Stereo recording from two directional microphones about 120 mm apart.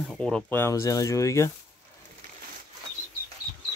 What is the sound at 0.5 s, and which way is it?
Speech, 20° left (ahead or behind).